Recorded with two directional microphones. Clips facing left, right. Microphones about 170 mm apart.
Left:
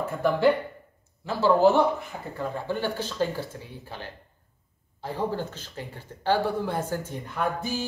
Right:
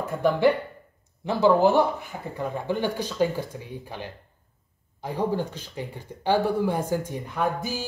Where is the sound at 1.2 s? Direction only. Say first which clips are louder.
Right 1 dB; 15° right (ahead or behind).